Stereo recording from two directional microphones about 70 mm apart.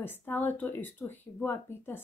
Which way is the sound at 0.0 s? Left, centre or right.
Left.